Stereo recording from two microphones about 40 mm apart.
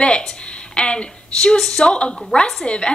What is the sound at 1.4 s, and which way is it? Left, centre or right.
Speech, centre.